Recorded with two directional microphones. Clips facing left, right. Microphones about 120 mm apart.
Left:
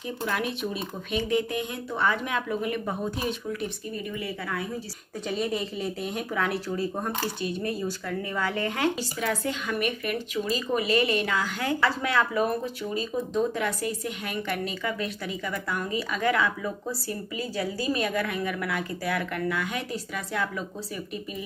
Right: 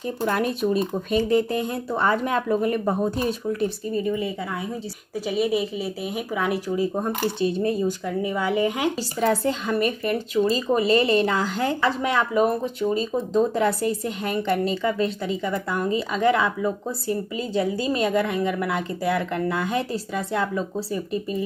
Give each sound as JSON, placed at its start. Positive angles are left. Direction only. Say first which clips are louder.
{"t": 0.2, "sound": "speech", "louder": "right 7 dB", "side_deg": -40}
{"t": 5.3, "sound": "speech", "louder": "right 6 dB", "side_deg": -5}
{"t": 9.2, "sound": "speech", "louder": "right 8 dB", "side_deg": -30}
{"t": 11.8, "sound": "speech", "louder": "right 1 dB", "side_deg": -20}